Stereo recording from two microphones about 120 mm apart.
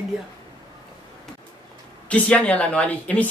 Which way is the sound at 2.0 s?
10° left (ahead or behind).